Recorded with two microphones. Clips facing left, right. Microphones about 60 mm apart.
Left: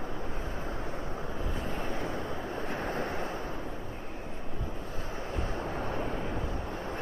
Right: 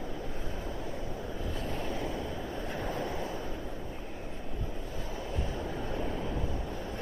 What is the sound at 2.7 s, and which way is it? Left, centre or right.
Waves, left.